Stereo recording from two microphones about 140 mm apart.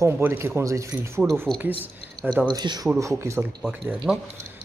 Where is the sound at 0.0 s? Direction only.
15° right (ahead or behind).